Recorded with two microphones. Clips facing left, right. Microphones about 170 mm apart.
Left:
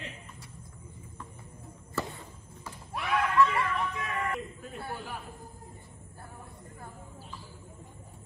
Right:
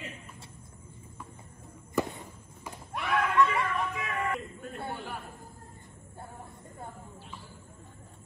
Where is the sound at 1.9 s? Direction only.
15° right (ahead or behind).